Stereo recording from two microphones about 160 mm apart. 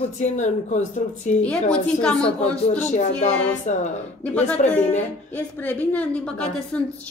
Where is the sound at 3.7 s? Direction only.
50° left (ahead or behind).